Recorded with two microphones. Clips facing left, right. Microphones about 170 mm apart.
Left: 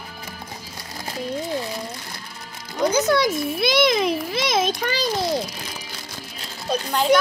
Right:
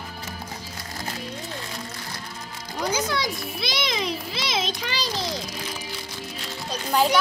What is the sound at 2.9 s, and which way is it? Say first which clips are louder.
A child's voice: left 7 dB; 45° left (ahead or behind).